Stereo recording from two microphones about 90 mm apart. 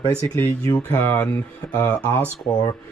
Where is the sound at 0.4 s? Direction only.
25° left (ahead or behind).